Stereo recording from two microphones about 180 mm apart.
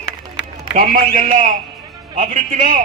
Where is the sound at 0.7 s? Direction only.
45° right (ahead or behind).